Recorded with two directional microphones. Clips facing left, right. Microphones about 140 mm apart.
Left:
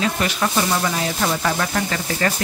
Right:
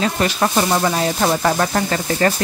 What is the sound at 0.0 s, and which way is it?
Speech, 40° right (ahead or behind).